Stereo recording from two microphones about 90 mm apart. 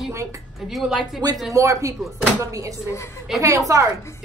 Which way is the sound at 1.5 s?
35° right (ahead or behind).